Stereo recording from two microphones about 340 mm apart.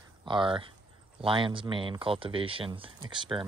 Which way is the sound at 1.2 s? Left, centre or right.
Centre.